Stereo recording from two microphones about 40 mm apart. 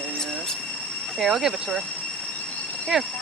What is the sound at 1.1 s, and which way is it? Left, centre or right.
Speech, centre.